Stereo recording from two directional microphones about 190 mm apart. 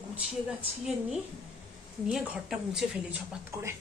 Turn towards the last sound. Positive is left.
turn(degrees=-15)  # may be behind; listen again after turning